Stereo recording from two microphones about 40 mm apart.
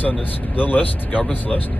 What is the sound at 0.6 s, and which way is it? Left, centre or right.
Speech, left.